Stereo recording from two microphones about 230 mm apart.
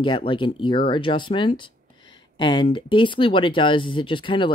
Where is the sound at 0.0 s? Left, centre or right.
Left.